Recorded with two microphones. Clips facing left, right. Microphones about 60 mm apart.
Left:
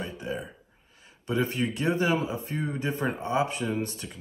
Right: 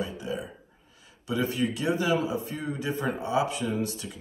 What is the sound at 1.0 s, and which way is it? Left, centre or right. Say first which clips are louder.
Speech: left 1 dB; left.